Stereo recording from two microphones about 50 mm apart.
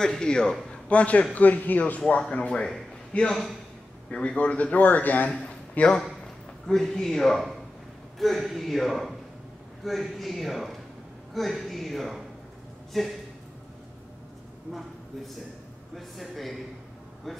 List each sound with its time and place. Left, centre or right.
0.0 s a man's voice: centre; by 2.0 s left
2.0 s a man's voice: left
5.3 s a sound: centre
6.7 s a man's voice: centre
16.2 s a man's voice: centre